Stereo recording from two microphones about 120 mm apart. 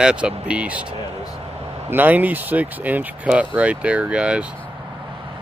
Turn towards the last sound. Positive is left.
turn(degrees=-10)  # may be behind; listen again after turning